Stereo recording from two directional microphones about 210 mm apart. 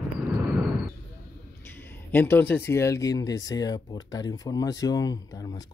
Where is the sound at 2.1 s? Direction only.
10° left (ahead or behind).